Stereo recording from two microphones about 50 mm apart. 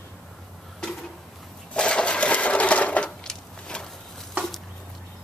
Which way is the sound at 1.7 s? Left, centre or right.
Centre.